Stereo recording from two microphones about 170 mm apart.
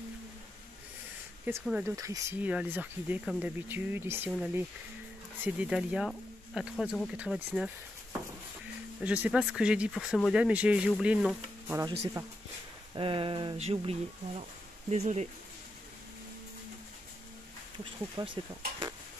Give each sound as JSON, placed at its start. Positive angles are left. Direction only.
{"t": 1.4, "sound": "speech", "side_deg": -10}
{"t": 9.0, "sound": "speech", "side_deg": -5}
{"t": 12.9, "sound": "speech", "side_deg": -30}
{"t": 18.1, "sound": "speech", "side_deg": -30}